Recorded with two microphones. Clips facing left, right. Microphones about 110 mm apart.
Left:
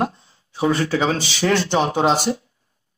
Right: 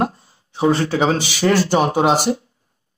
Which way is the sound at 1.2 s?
50° right (ahead or behind).